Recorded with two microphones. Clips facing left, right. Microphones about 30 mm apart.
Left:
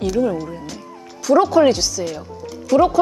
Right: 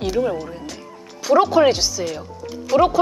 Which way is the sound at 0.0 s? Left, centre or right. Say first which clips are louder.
Left 2 dB; centre.